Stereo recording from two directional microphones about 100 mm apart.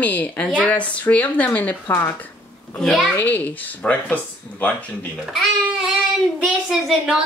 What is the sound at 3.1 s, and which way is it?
Speech, 15° left (ahead or behind).